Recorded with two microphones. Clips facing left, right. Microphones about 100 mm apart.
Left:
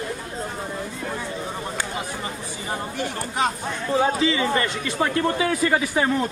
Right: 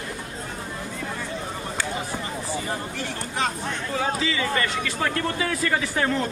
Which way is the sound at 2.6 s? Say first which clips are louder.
Left 2 dB; 20° left (ahead or behind).